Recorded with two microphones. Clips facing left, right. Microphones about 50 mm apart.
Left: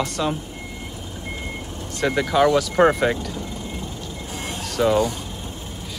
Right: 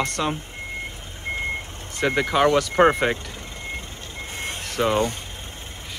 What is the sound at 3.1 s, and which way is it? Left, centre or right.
Vehicle, right.